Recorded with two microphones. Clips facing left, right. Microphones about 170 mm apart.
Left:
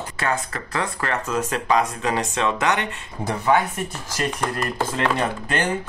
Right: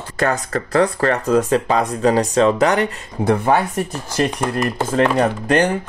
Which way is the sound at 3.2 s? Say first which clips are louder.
Right 10 dB; 60° right (ahead or behind).